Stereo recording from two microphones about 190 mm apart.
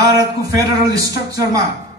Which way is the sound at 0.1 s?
20° right (ahead or behind).